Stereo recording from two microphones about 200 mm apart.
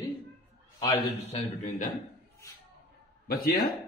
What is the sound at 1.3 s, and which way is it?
Speech, 35° left (ahead or behind).